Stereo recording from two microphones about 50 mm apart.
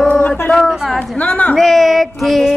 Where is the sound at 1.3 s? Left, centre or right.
Left.